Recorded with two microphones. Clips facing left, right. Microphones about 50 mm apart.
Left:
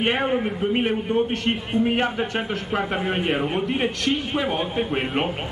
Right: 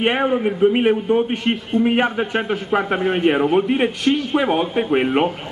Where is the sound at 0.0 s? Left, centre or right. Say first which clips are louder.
Right 4 dB; centre.